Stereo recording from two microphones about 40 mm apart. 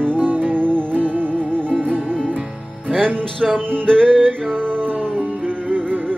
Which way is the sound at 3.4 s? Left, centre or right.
Centre.